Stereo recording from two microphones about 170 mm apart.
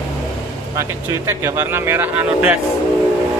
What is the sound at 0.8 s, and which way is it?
Speech, 15° right (ahead or behind).